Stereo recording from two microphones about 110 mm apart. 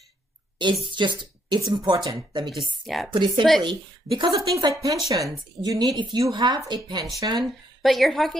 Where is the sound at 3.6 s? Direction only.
45° right (ahead or behind).